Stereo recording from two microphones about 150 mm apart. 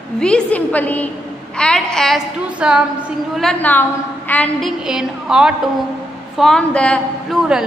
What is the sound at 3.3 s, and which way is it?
A woman's voice, 5° left (ahead or behind).